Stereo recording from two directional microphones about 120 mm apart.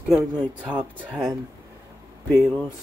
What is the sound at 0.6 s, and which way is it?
Speech, 10° right (ahead or behind).